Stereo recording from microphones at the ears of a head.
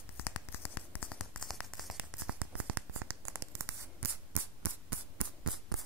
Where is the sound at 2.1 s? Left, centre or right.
Right.